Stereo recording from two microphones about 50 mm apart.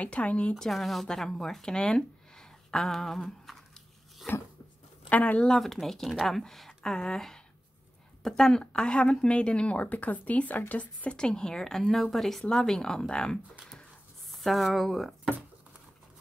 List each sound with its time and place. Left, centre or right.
0.0 s a woman's voice: left
0.6 s speech: centre
5.1 s a woman's voice: left
5.6 s speech: centre
6.8 s speech: centre
8.2 s a woman's voice: centre; by 11.1 s left
11.1 s speech: centre
14.3 s speech: centre